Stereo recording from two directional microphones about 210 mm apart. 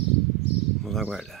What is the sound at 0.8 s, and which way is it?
Speech, centre (ahead or behind).